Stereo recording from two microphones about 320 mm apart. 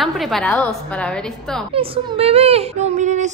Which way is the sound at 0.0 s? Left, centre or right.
Centre.